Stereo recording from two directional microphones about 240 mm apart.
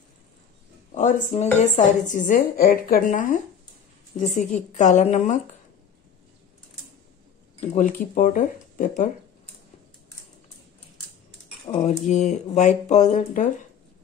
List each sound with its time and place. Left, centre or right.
0.9 s a woman's voice: left
7.6 s a woman's voice: left
11.6 s speech: left